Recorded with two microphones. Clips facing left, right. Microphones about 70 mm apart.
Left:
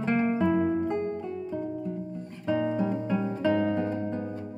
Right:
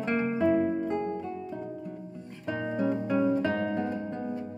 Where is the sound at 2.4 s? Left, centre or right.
Right.